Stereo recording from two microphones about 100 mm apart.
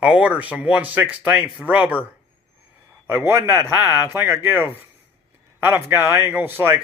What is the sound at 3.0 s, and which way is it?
A man's voice, 25° right (ahead or behind).